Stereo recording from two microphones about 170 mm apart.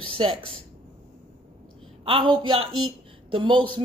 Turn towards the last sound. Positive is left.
turn(degrees=-30)  # may be behind; listen again after turning